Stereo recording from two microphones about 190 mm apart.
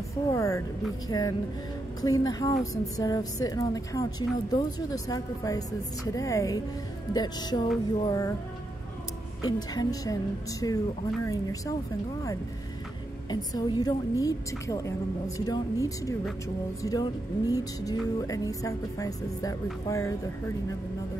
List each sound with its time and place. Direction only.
0.3 s a woman's voice: 15° left (ahead or behind)
9.4 s a woman's voice: 20° left (ahead or behind)
13.3 s a woman's voice: 20° left (ahead or behind)